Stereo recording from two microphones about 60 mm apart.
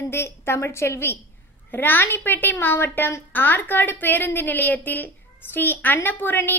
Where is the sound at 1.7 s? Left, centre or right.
Left.